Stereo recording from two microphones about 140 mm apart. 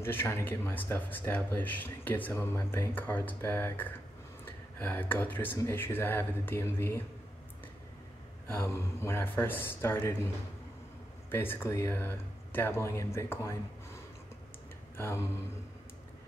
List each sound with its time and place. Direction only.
0.0 s speech: 15° left (ahead or behind)
8.5 s speech: 20° left (ahead or behind)
15.0 s speech: 20° left (ahead or behind)